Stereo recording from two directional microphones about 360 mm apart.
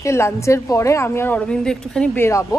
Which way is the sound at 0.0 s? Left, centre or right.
Centre.